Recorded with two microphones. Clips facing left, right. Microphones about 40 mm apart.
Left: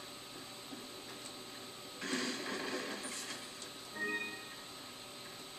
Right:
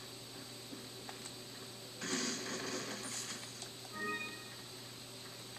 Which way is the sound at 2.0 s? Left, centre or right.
Centre.